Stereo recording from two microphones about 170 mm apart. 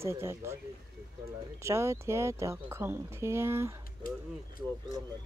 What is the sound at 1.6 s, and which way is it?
Speech, 15° right (ahead or behind).